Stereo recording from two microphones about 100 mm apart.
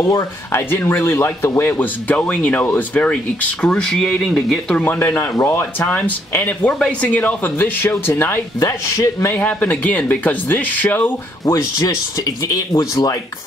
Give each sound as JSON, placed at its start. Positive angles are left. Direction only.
{"t": 0.0, "sound": "speech", "side_deg": 30}
{"t": 4.9, "sound": "speech", "side_deg": 20}
{"t": 8.5, "sound": "speech", "side_deg": 35}
{"t": 9.4, "sound": "speech", "side_deg": 15}
{"t": 11.5, "sound": "speech", "side_deg": 35}